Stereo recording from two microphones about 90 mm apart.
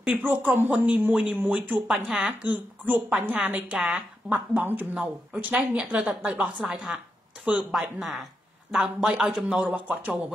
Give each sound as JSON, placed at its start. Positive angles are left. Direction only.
{"t": 0.1, "sound": "speech", "side_deg": -20}
{"t": 4.3, "sound": "speech", "side_deg": -20}